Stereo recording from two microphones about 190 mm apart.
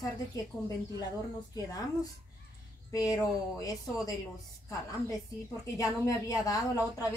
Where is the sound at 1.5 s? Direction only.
20° left (ahead or behind).